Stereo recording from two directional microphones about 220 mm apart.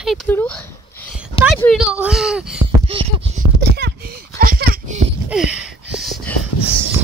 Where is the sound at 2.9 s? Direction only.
25° right (ahead or behind).